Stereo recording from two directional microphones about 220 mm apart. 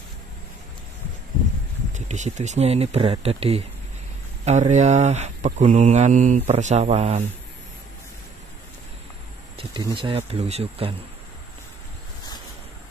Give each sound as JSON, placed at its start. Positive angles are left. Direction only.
{"t": 2.0, "sound": "speech", "side_deg": -30}
{"t": 9.6, "sound": "speech", "side_deg": -20}